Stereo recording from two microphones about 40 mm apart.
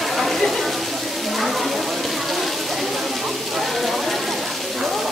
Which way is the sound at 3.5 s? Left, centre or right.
Centre.